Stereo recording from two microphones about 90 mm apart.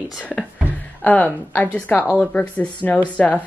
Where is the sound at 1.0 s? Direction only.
20° left (ahead or behind).